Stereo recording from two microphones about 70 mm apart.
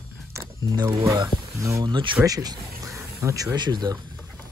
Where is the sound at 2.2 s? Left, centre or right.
Right.